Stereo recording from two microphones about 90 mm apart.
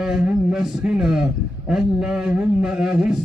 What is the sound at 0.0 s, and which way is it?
A man's voice, 10° right (ahead or behind).